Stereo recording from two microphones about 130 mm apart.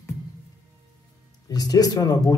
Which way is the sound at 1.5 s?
30° left (ahead or behind).